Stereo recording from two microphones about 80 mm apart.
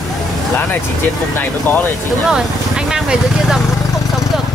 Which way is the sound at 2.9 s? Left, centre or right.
Centre.